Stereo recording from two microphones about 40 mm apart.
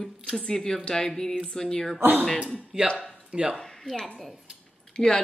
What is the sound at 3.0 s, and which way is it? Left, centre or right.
Speech, right.